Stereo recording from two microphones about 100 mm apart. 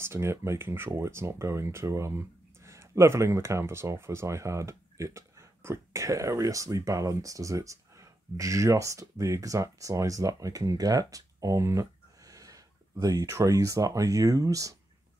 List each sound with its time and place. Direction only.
0.0 s speech: 25° right (ahead or behind)